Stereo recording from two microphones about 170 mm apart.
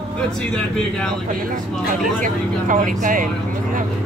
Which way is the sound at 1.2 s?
55° right (ahead or behind).